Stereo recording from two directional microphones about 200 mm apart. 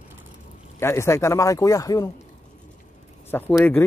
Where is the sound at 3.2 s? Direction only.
10° left (ahead or behind).